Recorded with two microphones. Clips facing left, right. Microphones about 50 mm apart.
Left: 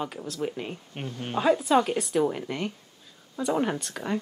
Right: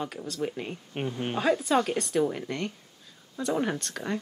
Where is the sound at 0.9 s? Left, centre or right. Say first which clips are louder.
Right 4 dB; centre.